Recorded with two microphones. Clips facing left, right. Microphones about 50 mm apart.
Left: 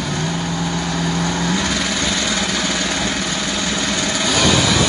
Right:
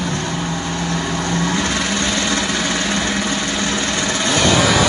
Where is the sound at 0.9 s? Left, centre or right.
Centre.